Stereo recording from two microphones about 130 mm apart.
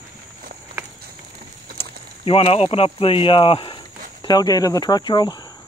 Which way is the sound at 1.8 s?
45° left (ahead or behind).